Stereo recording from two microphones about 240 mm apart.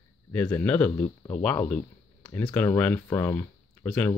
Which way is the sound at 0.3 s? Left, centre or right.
Centre.